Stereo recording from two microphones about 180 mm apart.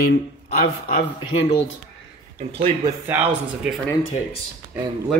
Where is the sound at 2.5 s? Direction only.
30° right (ahead or behind).